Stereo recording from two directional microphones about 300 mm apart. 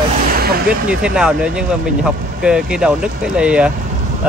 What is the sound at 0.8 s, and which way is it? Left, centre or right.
Speech, centre.